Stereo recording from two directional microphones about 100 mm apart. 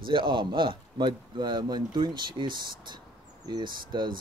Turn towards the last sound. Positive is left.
turn(degrees=-50)  # may be behind; listen again after turning